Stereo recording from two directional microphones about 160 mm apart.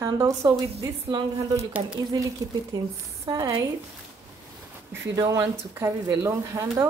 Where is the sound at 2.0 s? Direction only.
25° right (ahead or behind).